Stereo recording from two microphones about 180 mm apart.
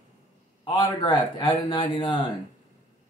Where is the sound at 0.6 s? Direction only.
25° left (ahead or behind).